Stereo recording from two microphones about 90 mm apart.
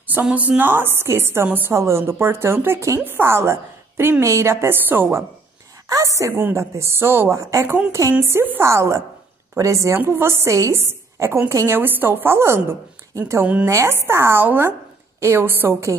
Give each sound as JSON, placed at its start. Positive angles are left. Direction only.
{"t": 0.1, "sound": "a woman's voice", "side_deg": -20}
{"t": 5.9, "sound": "a woman's voice", "side_deg": -35}
{"t": 7.6, "sound": "a woman's voice", "side_deg": -20}